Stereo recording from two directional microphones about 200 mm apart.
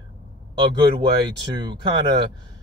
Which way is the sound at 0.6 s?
20° right (ahead or behind).